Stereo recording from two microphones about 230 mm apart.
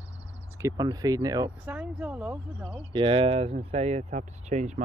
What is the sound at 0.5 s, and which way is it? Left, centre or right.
Speech, centre.